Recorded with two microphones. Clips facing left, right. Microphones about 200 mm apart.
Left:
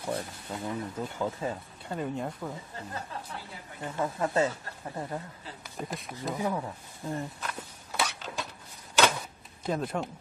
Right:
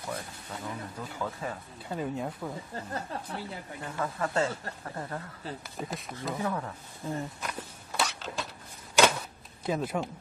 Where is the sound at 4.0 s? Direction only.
20° left (ahead or behind).